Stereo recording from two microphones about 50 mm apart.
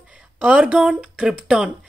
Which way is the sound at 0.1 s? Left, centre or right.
Right.